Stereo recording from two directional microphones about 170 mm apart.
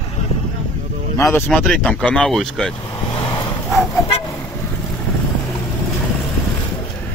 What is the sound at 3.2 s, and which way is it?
Vehicle, 30° left (ahead or behind).